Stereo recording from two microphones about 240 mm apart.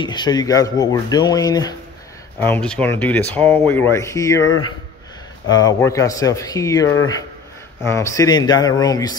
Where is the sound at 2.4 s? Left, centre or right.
Centre.